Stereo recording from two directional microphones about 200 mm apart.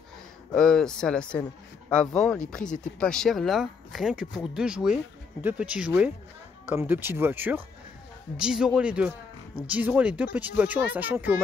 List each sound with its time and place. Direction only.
0.6 s speech: 5° left (ahead or behind)